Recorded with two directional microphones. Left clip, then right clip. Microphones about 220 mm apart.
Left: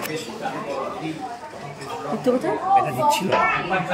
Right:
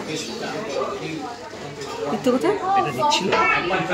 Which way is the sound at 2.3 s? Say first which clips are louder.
Even; 20° right (ahead or behind).